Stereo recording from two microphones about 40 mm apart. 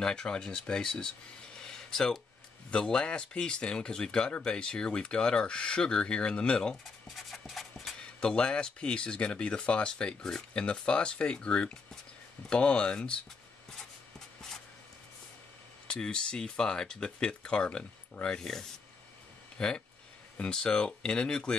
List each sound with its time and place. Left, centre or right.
0.0 s speech: left
1.7 s a sound: centre
2.7 s speech: left
7.2 s a sound: centre
8.2 s speech: left
15.9 s speech: left
19.6 s speech: centre